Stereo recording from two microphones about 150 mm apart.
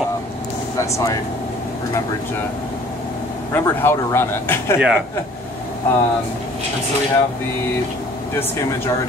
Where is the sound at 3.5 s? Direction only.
15° left (ahead or behind).